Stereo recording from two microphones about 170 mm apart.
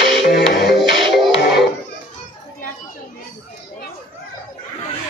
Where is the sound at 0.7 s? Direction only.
Centre (ahead or behind).